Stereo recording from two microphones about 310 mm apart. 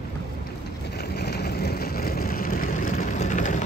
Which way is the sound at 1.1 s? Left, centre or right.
Left.